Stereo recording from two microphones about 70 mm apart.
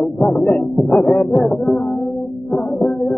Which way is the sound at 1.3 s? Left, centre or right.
Centre.